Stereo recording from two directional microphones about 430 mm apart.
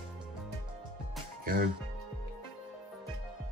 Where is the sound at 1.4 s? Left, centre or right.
Right.